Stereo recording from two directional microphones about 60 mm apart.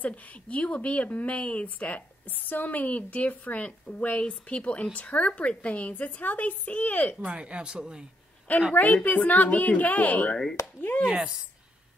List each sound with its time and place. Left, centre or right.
0.0 s a woman's voice: left
7.2 s speech: centre
8.7 s a woman's voice: left
11.1 s speech: centre